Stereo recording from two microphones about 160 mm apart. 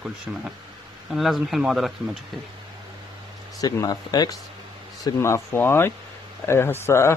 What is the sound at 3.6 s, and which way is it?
Speech, 25° left (ahead or behind).